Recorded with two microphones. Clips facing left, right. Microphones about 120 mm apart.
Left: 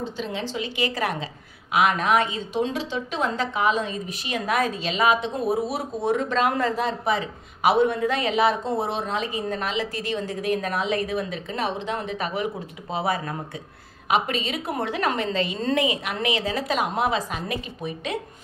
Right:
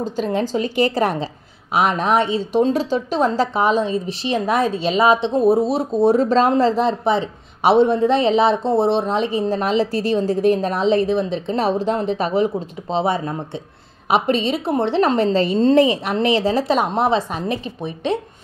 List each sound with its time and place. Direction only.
0.0 s a woman's voice: 45° right (ahead or behind); by 18.2 s 30° right (ahead or behind)